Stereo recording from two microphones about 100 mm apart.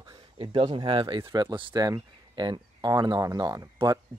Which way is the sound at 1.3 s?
45° right (ahead or behind).